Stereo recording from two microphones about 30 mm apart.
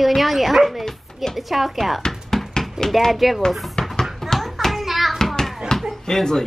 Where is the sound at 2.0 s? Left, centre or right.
Centre.